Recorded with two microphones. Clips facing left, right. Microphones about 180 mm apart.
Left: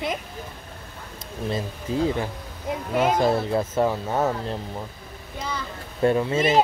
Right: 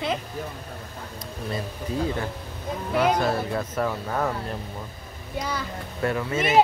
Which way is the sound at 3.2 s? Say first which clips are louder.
Left 4 dB; 25° left (ahead or behind).